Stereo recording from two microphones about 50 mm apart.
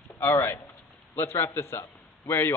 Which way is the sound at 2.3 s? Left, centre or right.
Left.